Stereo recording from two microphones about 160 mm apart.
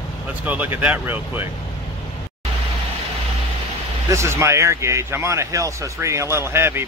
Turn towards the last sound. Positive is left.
turn(degrees=-15)  # may be behind; listen again after turning